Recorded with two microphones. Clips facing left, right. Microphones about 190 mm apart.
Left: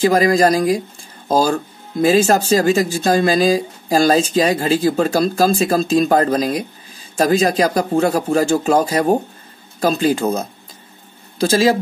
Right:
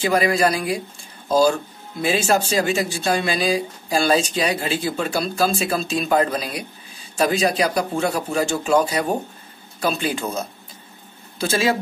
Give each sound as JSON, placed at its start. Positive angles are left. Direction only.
{"t": 0.0, "sound": "speech", "side_deg": 40}
{"t": 11.4, "sound": "speech", "side_deg": 35}